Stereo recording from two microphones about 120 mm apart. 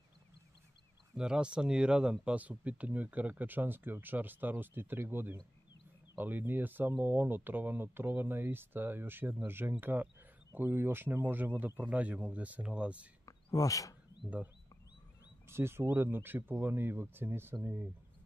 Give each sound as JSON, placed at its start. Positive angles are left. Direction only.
{"t": 1.1, "sound": "speech", "side_deg": -5}
{"t": 13.2, "sound": "a sound", "side_deg": 30}
{"t": 15.4, "sound": "speech", "side_deg": -20}